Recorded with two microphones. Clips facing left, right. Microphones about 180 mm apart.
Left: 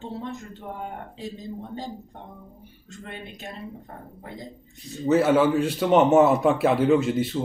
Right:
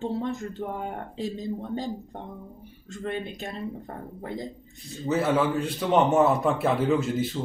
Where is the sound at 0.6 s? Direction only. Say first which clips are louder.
Right 5 dB; 45° right (ahead or behind).